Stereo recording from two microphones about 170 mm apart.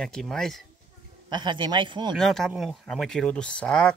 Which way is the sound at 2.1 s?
Centre (ahead or behind).